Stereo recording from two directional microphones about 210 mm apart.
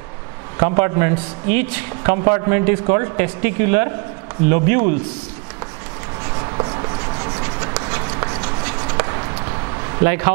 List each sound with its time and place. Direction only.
0.6 s a man's voice: 15° right (ahead or behind)
6.6 s writing: 25° right (ahead or behind)
7.7 s run: 15° right (ahead or behind)
9.9 s a man's voice: 15° right (ahead or behind)